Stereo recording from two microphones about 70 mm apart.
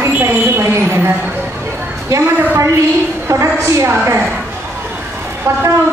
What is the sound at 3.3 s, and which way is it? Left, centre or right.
Speech, right.